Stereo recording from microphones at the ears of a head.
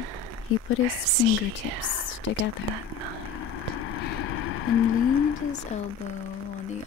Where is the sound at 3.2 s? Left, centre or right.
Left.